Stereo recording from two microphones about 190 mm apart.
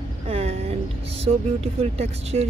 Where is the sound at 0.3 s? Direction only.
35° right (ahead or behind).